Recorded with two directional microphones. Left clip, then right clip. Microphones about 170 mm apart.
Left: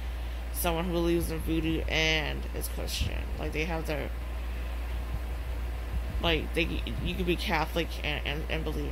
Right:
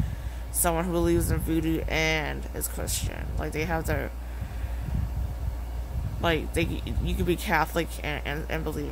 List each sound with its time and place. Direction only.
0.6 s speech: 20° right (ahead or behind)
6.2 s speech: 20° right (ahead or behind)